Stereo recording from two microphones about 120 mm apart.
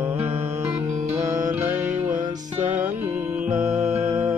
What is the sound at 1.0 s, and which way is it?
Music, 85° right.